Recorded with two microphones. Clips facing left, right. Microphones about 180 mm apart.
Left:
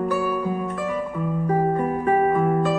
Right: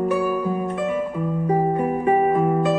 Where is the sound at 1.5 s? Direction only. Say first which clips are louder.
Right 1 dB; 15° right (ahead or behind).